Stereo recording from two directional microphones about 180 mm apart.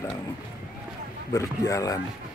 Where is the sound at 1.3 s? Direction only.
15° left (ahead or behind).